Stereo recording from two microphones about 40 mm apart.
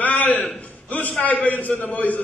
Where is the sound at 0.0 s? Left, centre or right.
Left.